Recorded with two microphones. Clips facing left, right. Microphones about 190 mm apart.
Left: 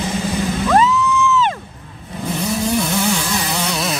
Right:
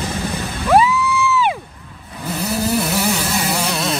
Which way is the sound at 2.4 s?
5° right (ahead or behind).